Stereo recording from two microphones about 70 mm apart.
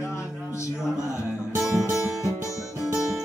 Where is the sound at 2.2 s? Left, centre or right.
Left.